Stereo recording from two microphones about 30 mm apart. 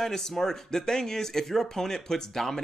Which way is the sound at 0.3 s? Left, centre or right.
Centre.